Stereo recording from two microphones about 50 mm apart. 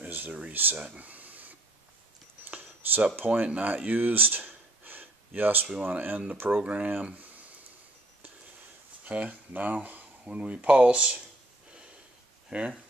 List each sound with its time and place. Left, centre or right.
0.0 s a sound: right
0.4 s speech: right
0.9 s a sound: right
3.4 s speech: right
6.6 s speech: right
9.0 s speech: right
12.4 s speech: right